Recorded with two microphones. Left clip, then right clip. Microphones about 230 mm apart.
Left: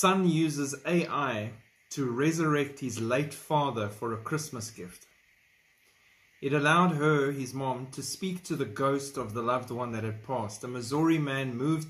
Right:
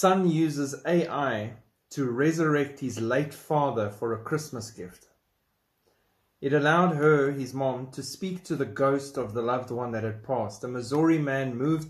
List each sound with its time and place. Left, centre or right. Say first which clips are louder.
0.4 s speech: right 3 dB; centre
6.5 s speech: right 2 dB; centre